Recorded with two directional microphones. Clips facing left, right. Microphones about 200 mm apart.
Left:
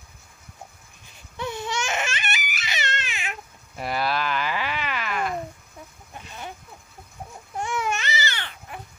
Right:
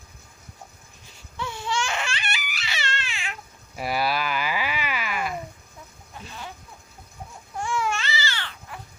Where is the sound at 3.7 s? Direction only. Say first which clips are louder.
Right 1 dB; 5° right (ahead or behind).